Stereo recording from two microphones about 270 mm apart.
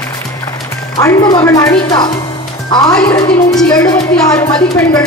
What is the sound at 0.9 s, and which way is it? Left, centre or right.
Speech, centre.